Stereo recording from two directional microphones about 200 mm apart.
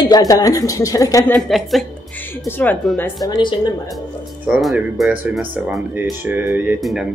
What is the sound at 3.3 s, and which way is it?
Speech, 20° left (ahead or behind).